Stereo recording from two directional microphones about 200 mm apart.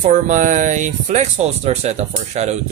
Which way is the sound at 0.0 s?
40° right (ahead or behind).